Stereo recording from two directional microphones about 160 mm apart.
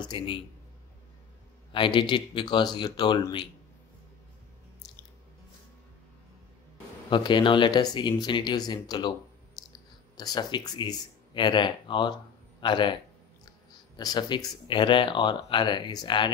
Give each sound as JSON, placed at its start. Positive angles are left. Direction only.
{"t": 0.0, "sound": "speech", "side_deg": 30}
{"t": 1.7, "sound": "speech", "side_deg": 30}
{"t": 7.1, "sound": "speech", "side_deg": 30}
{"t": 10.1, "sound": "speech", "side_deg": 25}
{"t": 13.9, "sound": "speech", "side_deg": 25}